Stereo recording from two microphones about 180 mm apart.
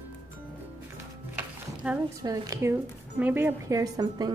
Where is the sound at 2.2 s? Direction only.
20° right (ahead or behind).